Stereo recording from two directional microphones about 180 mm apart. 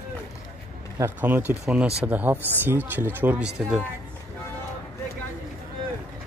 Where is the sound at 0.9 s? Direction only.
10° right (ahead or behind).